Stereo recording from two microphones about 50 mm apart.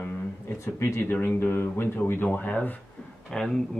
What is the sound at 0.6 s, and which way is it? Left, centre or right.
Speech, left.